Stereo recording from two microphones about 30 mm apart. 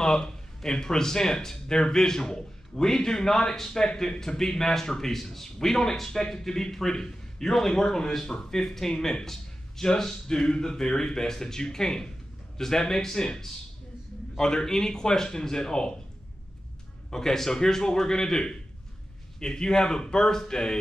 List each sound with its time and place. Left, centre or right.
0.0 s a man's voice: centre
17.1 s a man's voice: centre